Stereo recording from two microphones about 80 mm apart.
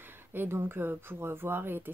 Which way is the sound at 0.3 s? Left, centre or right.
Right.